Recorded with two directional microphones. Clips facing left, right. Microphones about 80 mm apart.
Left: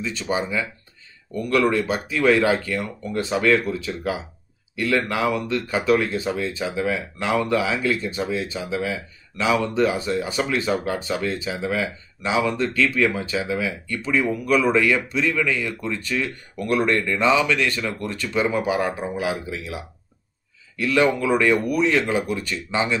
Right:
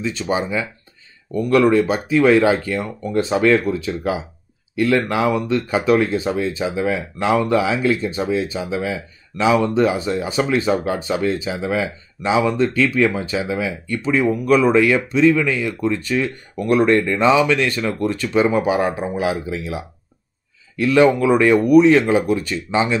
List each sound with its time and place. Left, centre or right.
0.0 s speech: right
20.8 s speech: right